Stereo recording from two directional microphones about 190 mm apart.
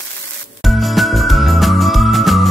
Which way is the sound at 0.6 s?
Centre (ahead or behind).